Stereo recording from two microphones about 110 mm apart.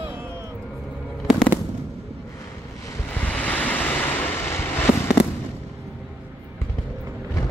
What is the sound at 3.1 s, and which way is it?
Waves, 15° left (ahead or behind).